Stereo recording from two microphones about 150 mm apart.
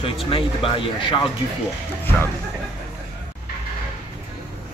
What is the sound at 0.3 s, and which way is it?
Speech, 35° left (ahead or behind).